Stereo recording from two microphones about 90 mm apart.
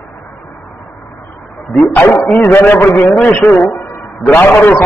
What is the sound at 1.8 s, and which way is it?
A man's voice, 20° left (ahead or behind).